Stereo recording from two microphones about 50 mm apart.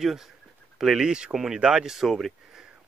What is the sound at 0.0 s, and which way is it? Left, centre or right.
Speech, centre.